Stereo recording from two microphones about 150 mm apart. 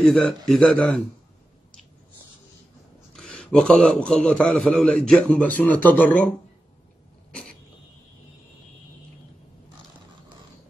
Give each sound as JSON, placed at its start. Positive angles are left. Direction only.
{"t": 0.0, "sound": "speech", "side_deg": 5}
{"t": 3.1, "sound": "a man's voice", "side_deg": 5}